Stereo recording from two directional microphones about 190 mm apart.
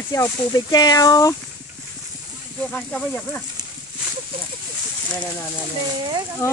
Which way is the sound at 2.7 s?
5° left (ahead or behind).